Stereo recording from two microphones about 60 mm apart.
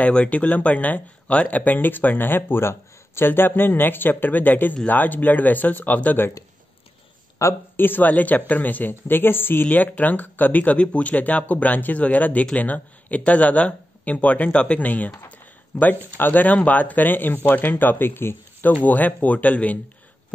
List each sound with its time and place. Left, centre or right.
0.0 s speech: left
7.4 s speech: left
7.7 s speech: left